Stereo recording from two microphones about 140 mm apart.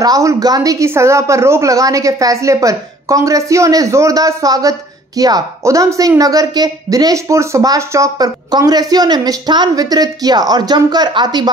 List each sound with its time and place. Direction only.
0.0 s speech: 25° right (ahead or behind)